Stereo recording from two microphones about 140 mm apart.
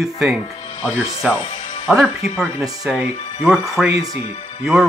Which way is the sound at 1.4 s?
45° left (ahead or behind).